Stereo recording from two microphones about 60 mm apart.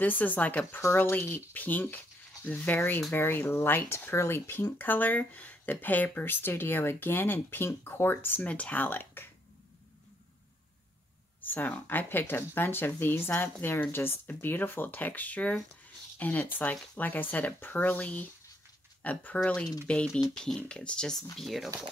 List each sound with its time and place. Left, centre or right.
0.0 s speech: left
1.1 s speech: left
1.5 s speech: left
3.1 s speech: left
8.4 s speech: left
8.8 s speech: left
11.4 s speech: left; by 20.6 s centre
20.6 s speech: centre
21.4 s speech: centre